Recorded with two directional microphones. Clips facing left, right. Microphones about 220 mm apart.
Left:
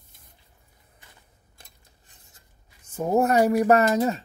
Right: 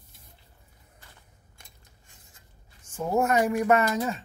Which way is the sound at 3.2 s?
35° left (ahead or behind).